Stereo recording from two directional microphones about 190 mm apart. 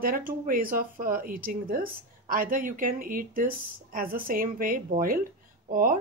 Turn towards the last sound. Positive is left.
turn(degrees=-45)  # may be behind; listen again after turning